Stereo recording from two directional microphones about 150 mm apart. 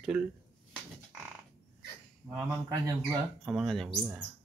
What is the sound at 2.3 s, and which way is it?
Speech, 20° right (ahead or behind).